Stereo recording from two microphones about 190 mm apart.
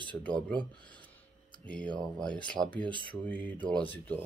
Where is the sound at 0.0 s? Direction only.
5° left (ahead or behind).